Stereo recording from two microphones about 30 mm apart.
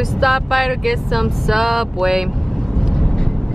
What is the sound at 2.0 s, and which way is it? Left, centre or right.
Speech, centre.